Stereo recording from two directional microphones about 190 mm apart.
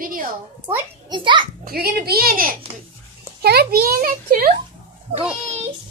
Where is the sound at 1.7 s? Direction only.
55° right (ahead or behind).